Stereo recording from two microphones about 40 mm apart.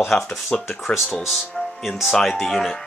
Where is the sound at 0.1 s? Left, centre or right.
Centre.